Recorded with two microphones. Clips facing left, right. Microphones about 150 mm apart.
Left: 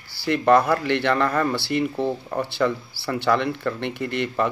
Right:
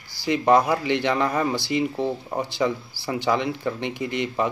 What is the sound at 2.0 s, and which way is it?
Speech, 15° right (ahead or behind).